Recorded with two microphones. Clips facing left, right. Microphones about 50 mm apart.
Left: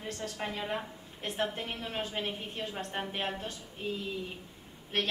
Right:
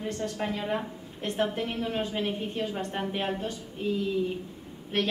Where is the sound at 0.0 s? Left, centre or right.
Centre.